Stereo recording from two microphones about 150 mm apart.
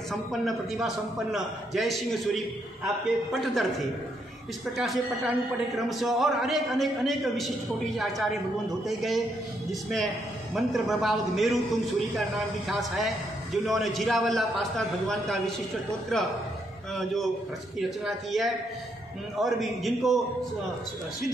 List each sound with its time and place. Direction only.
0.1 s a man's voice: centre (ahead or behind)